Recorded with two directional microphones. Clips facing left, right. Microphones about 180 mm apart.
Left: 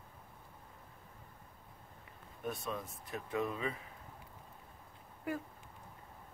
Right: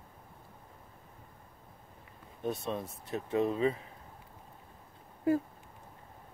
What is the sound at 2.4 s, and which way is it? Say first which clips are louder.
Speech: right 5 dB; 25° right (ahead or behind).